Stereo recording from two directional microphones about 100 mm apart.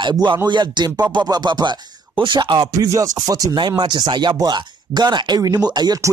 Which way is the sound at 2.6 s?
35° right (ahead or behind).